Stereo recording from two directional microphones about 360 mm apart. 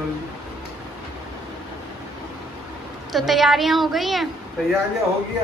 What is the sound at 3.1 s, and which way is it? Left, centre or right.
A woman's voice, centre.